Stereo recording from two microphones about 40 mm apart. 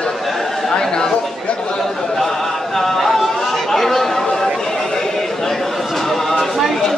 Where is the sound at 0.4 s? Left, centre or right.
Centre.